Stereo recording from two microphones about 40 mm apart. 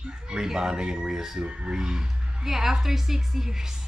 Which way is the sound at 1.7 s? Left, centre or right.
Centre.